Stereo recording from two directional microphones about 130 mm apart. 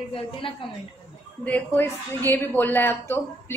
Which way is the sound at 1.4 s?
15° left (ahead or behind).